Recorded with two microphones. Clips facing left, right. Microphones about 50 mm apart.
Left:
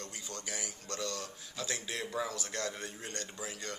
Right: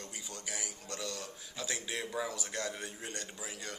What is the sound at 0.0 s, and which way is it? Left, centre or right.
Speech, centre.